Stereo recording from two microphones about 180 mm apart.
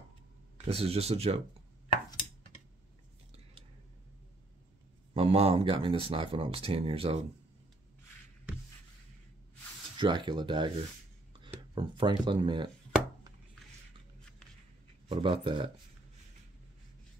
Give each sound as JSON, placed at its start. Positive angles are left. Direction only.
{"t": 0.7, "sound": "speech", "side_deg": -35}
{"t": 1.9, "sound": "a sound", "side_deg": 30}
{"t": 5.1, "sound": "speech", "side_deg": -35}
{"t": 9.9, "sound": "speech", "side_deg": -25}
{"t": 15.0, "sound": "speech", "side_deg": -30}